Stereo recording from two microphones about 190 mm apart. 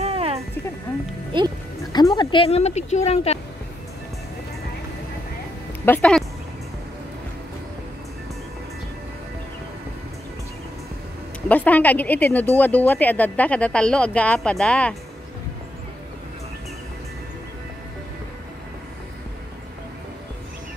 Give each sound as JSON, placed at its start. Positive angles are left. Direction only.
{"t": 0.0, "sound": "a sound", "side_deg": -30}
{"t": 1.3, "sound": "speech", "side_deg": -25}
{"t": 1.9, "sound": "a woman's voice", "side_deg": 20}
{"t": 5.9, "sound": "speech", "side_deg": 5}
{"t": 11.4, "sound": "speech", "side_deg": 10}